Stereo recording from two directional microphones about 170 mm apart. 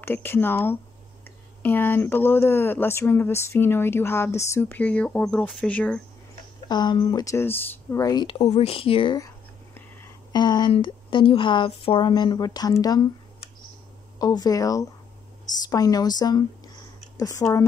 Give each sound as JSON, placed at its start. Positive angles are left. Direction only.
{"t": 0.0, "sound": "speech", "side_deg": 15}
{"t": 6.7, "sound": "a woman's voice", "side_deg": 25}
{"t": 10.3, "sound": "a woman's voice", "side_deg": 25}
{"t": 14.1, "sound": "a woman's voice", "side_deg": 20}